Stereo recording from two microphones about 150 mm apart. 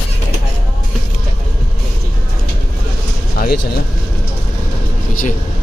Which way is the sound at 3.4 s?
80° left.